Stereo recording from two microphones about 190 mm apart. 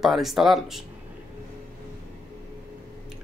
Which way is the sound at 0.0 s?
Centre (ahead or behind).